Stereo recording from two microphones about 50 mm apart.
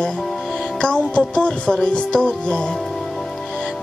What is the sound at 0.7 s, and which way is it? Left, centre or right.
Music, centre.